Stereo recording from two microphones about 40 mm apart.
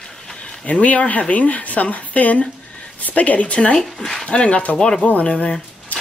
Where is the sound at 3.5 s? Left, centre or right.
Left.